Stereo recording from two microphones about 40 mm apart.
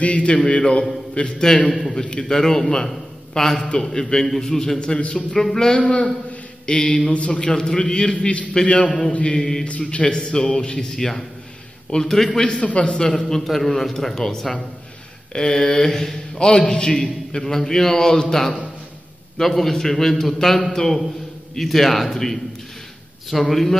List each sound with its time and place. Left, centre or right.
0.0 s a man's voice: left
1.7 s a man's voice: centre
2.0 s a man's voice: centre
4.7 s a man's voice: left
5.8 s a man's voice: left
9.4 s a man's voice: centre
9.7 s a man's voice: left; by 11.2 s centre
11.9 s a man's voice: left
13.0 s a man's voice: centre
23.5 s a man's voice: centre